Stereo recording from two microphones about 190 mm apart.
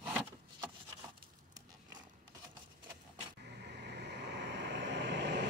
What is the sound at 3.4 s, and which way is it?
Vehicle, 60° right (ahead or behind).